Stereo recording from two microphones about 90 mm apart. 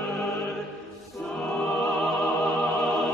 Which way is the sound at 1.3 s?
Centre (ahead or behind).